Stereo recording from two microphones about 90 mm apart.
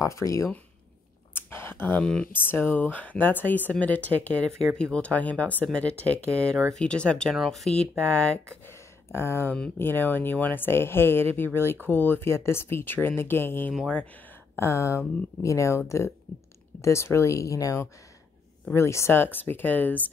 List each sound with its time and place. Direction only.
0.0 s speech: 35° left (ahead or behind)
1.3 s a sound: 25° left (ahead or behind)
2.3 s speech: 20° left (ahead or behind); by 7.8 s 5° left (ahead or behind)
8.6 s a sound: 25° left (ahead or behind)
9.8 s speech: 25° left (ahead or behind)
16.8 s speech: 30° left (ahead or behind)